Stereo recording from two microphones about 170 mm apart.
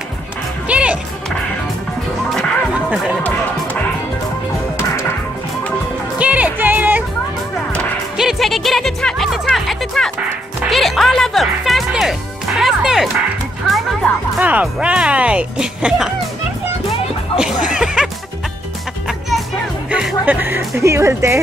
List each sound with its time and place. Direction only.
0.7 s music: 5° right (ahead or behind)
2.2 s music: 5° left (ahead or behind)
2.7 s music: 5° right (ahead or behind)
6.1 s music: 10° right (ahead or behind)
17.4 s music: 5° right (ahead or behind)
19.9 s speech: 5° right (ahead or behind)